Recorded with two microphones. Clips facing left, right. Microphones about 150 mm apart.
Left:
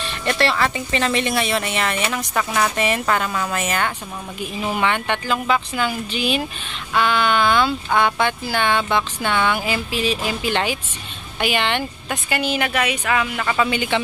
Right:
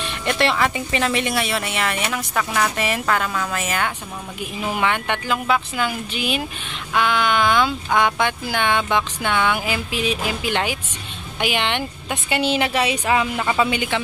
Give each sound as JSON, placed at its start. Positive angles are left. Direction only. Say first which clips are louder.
{"t": 0.0, "sound": "speech", "louder": "even", "side_deg": -15}
{"t": 12.3, "sound": "a woman's voice", "louder": "right 2 dB", "side_deg": -25}